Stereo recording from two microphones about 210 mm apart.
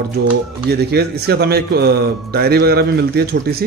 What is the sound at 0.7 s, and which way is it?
Speech, 50° right (ahead or behind).